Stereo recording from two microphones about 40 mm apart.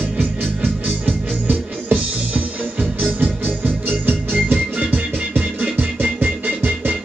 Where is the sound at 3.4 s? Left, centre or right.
Right.